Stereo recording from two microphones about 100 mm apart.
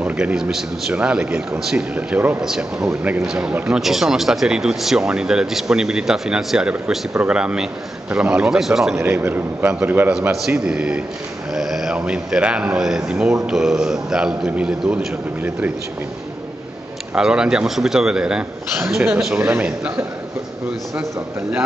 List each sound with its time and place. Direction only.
0.0 s speech: 10° right (ahead or behind)
9.0 s speech: 20° right (ahead or behind)
17.1 s speech: 10° right (ahead or behind)
19.3 s a man's voice: 20° right (ahead or behind)